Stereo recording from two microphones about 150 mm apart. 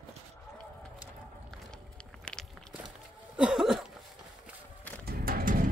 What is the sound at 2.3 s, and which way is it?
Walk, 10° left (ahead or behind).